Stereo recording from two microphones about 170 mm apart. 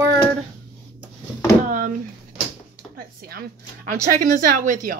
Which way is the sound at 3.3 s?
55° right (ahead or behind).